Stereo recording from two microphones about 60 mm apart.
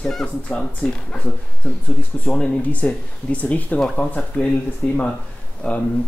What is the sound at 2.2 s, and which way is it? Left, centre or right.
Speech, centre.